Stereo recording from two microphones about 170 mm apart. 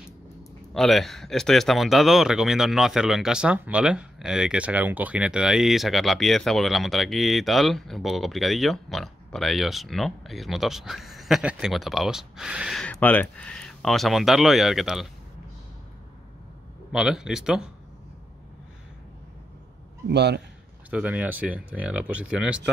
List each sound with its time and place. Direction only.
0.7 s speech: centre (ahead or behind)
12.8 s speech: 10° left (ahead or behind)
16.9 s speech: 5° right (ahead or behind)
20.1 s a man's voice: 80° right
20.9 s speech: 10° right (ahead or behind)